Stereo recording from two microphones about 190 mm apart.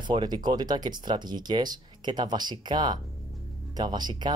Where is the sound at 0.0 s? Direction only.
25° right (ahead or behind).